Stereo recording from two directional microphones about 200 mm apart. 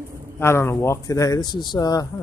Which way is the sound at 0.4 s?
15° left (ahead or behind).